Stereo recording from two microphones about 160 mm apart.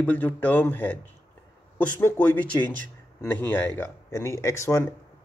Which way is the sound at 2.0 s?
10° left (ahead or behind).